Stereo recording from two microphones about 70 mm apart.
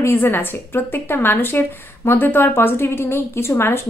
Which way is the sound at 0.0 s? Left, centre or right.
Left.